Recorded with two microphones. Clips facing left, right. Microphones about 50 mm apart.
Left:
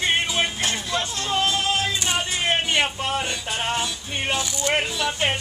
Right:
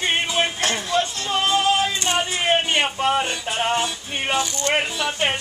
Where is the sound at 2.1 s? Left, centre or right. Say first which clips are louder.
Right 5 dB; centre.